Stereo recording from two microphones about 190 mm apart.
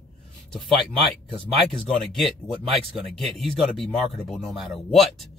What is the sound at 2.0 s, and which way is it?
Speech, centre (ahead or behind).